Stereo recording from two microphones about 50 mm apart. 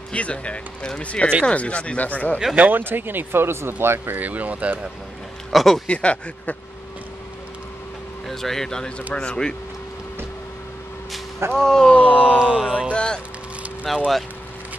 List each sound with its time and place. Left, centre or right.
0.1 s speech: left
2.5 s speech: right
2.8 s speech: right
4.2 s speech: right
5.5 s speech: centre
5.9 s speech: left
8.3 s speech: centre
11.5 s speech: centre
12.1 s mantra: centre
12.9 s speech: centre
13.8 s speech: centre